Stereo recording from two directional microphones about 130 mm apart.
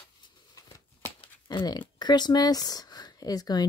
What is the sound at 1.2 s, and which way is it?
Crumpling, 40° left (ahead or behind).